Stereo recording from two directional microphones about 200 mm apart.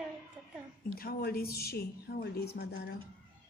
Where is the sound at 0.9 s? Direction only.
50° left (ahead or behind).